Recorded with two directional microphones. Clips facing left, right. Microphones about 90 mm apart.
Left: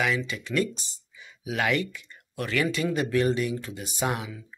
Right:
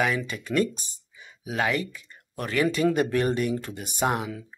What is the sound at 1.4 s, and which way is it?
Speech, 30° right (ahead or behind).